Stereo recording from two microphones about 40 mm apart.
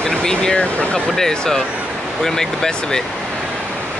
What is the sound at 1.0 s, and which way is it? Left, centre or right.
Speech, centre.